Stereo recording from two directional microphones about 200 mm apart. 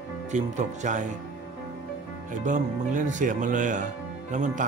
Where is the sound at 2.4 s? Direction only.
40° right (ahead or behind).